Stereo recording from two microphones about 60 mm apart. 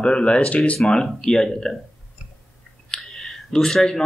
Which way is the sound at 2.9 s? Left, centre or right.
Centre.